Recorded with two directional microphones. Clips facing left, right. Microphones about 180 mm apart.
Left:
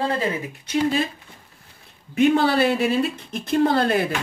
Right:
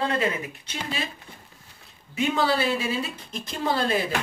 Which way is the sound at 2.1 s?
60° left (ahead or behind).